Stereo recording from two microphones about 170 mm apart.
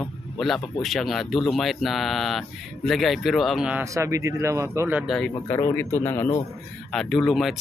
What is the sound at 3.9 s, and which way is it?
Speech, 20° right (ahead or behind).